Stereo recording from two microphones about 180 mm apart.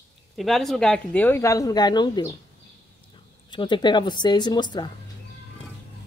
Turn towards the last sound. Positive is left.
turn(degrees=25)  # may be behind; listen again after turning